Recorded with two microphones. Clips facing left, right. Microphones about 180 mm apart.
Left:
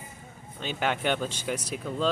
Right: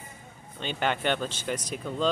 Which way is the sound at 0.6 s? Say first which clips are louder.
Even; 5° left (ahead or behind).